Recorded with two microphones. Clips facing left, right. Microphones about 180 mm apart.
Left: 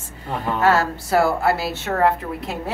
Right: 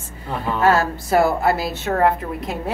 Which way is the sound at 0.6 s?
15° right (ahead or behind).